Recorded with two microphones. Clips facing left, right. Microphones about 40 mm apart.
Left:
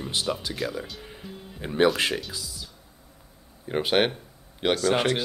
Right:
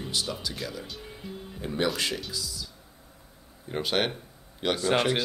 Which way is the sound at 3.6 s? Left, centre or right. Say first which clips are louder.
Left 5 dB; left.